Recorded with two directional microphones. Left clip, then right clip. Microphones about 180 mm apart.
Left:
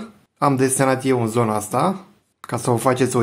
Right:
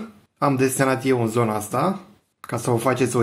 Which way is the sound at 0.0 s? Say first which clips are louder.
Left 3 dB; 20° left (ahead or behind).